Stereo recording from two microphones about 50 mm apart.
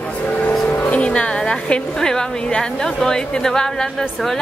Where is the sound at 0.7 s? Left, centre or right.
Left.